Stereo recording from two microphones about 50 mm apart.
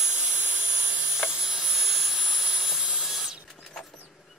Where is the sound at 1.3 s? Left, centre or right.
Centre.